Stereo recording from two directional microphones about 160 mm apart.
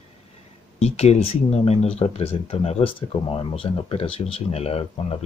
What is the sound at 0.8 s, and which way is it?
Speech, 40° left (ahead or behind).